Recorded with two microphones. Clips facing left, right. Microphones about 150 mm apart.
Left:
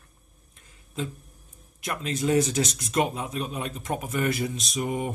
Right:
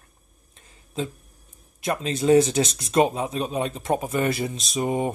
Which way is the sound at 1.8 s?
30° right (ahead or behind).